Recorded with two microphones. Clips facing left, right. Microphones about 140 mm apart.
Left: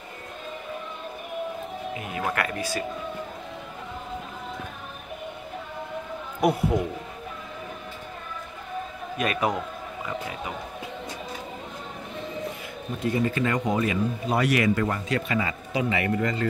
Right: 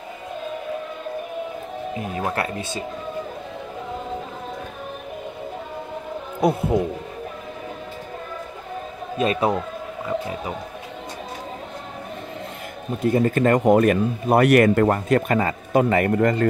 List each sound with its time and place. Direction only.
2.1 s speech: 30° right (ahead or behind)
6.4 s speech: 25° right (ahead or behind)
9.2 s speech: 30° right (ahead or behind)
13.0 s speech: 45° right (ahead or behind)